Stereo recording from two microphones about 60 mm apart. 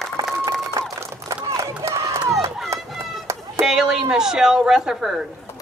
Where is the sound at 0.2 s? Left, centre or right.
Right.